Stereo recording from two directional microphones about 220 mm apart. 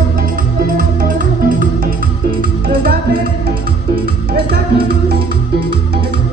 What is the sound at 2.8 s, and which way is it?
Music, 40° right (ahead or behind).